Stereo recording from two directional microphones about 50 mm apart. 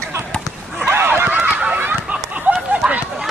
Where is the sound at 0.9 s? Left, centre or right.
Right.